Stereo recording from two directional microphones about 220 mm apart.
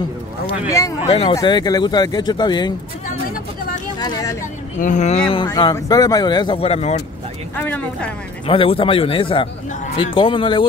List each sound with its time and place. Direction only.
1.0 s speech: 25° left (ahead or behind)
4.0 s vehicle: 15° left (ahead or behind)
4.7 s speech: 35° left (ahead or behind)
7.5 s speech: 10° left (ahead or behind)
8.5 s speech: 25° left (ahead or behind)